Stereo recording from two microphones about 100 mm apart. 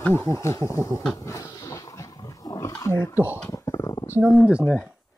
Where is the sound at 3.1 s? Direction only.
20° right (ahead or behind).